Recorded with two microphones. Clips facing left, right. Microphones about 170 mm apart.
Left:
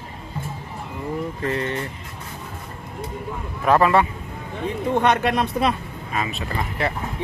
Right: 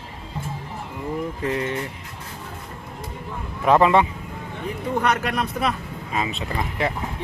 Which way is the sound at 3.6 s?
20° right (ahead or behind).